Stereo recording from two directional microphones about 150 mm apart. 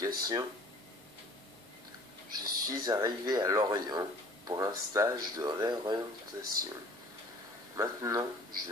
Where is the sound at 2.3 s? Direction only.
25° right (ahead or behind).